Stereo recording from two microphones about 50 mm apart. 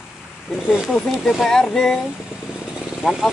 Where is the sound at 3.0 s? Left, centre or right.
Centre.